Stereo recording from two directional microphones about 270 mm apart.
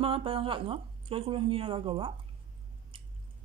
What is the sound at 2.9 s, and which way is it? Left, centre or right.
Squish, centre.